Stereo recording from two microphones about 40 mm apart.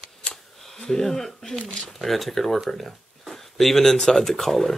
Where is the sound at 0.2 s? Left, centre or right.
Left.